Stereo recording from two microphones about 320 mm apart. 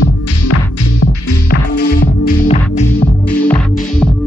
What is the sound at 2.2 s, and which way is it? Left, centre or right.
Music, left.